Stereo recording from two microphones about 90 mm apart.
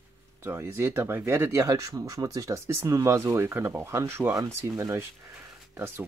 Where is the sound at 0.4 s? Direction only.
30° right (ahead or behind).